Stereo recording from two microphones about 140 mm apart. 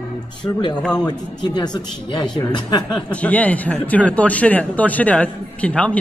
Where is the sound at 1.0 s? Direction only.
30° left (ahead or behind).